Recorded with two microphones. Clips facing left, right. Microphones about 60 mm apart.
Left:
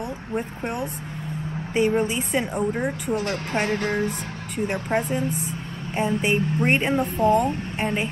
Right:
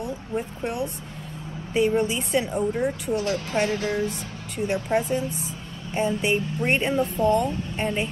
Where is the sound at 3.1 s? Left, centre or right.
Left.